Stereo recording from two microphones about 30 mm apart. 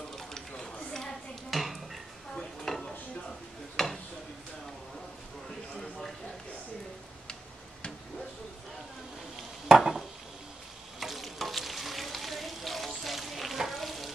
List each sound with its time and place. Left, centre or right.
0.1 s a sound: centre
1.5 s dishes: centre
2.3 s stir: centre
3.7 s a sound: centre
9.8 s dishes: centre
11.0 s frying: centre